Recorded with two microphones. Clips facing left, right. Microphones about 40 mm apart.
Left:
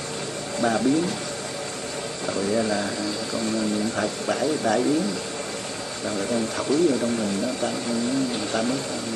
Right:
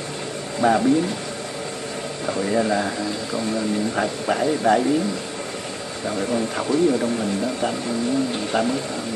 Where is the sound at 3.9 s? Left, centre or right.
Centre.